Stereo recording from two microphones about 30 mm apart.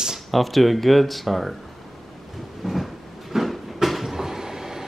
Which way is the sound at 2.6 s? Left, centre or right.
Centre.